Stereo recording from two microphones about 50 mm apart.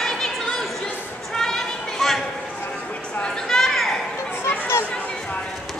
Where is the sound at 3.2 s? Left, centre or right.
Centre.